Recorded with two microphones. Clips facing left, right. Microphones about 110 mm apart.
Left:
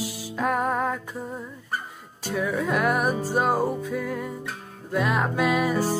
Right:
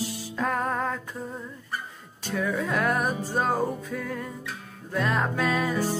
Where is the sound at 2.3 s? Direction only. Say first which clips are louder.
Left 2 dB; 10° left (ahead or behind).